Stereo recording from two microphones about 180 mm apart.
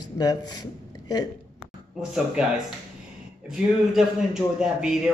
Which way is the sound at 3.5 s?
Centre (ahead or behind).